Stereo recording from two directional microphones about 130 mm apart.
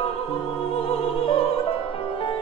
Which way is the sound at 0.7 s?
45° left (ahead or behind).